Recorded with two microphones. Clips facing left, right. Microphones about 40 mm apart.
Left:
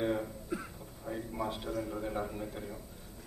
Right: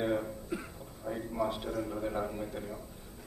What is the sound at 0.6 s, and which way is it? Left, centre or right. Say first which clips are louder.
A man's voice: right 1 dB; centre.